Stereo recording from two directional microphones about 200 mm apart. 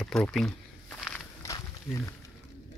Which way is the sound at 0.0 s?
5° left (ahead or behind).